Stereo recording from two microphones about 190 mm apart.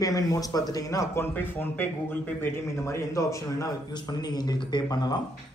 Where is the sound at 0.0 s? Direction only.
20° left (ahead or behind).